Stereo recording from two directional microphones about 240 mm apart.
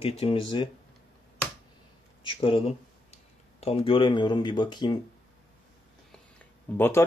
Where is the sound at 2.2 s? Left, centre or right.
Left.